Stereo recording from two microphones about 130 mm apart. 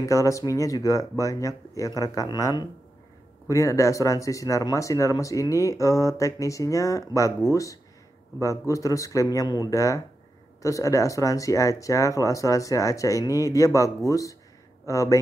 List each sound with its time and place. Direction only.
0.0 s speech: 25° left (ahead or behind)